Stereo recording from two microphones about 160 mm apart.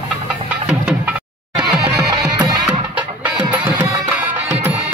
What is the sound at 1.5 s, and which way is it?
Music, 5° right (ahead or behind).